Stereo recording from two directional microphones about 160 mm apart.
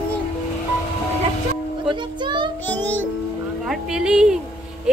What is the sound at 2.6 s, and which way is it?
Music, 10° left (ahead or behind).